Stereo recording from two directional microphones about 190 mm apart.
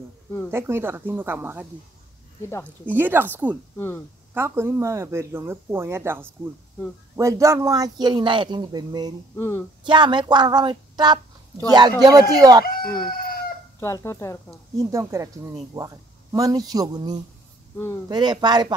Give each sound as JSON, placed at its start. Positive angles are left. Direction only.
{"t": 0.5, "sound": "speech", "side_deg": -10}
{"t": 2.9, "sound": "speech", "side_deg": -10}
{"t": 3.7, "sound": "speech", "side_deg": 10}
{"t": 4.3, "sound": "speech", "side_deg": -10}
{"t": 9.4, "sound": "speech", "side_deg": 10}
{"t": 9.8, "sound": "a woman's voice", "side_deg": -25}
{"t": 12.6, "sound": "chicken", "side_deg": 50}
{"t": 13.7, "sound": "speech", "side_deg": 15}
{"t": 14.8, "sound": "speech", "side_deg": -15}